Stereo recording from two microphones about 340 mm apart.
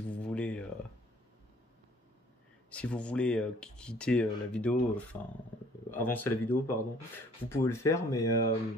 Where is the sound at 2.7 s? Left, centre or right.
Centre.